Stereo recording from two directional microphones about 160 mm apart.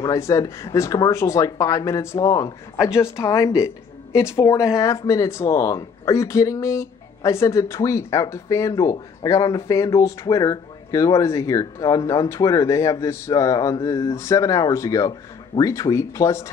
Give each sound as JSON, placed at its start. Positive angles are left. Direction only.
{"t": 0.0, "sound": "speech", "side_deg": 20}